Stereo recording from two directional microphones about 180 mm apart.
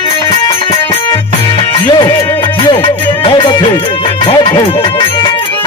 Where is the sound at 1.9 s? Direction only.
25° left (ahead or behind).